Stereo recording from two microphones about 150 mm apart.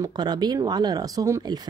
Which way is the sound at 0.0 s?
30° right (ahead or behind).